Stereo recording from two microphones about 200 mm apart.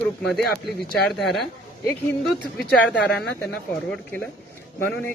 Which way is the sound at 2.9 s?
5° left (ahead or behind).